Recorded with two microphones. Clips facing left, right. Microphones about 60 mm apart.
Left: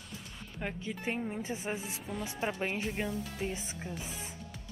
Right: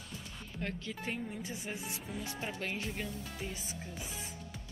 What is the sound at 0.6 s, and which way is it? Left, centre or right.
Speech, centre.